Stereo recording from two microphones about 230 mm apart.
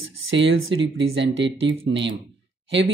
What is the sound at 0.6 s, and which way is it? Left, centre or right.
Speech, right.